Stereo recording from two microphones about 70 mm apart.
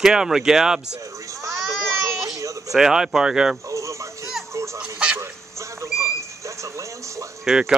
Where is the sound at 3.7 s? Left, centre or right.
Right.